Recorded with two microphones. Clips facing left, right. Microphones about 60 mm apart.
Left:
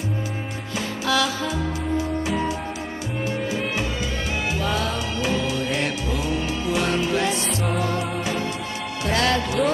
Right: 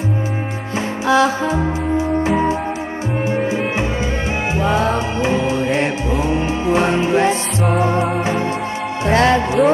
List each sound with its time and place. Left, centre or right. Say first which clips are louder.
1.0 s music: right 8 dB; right